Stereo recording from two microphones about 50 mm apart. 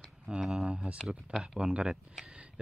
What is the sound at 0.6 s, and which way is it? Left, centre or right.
Speech, right.